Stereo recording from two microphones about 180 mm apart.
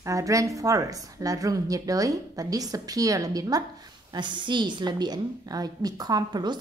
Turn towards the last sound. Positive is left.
turn(degrees=-20)  # may be behind; listen again after turning